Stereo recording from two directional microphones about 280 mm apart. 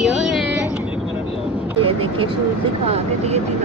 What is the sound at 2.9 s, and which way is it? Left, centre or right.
Speech, right.